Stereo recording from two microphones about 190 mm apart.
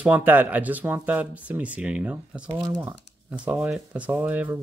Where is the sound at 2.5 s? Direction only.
20° right (ahead or behind).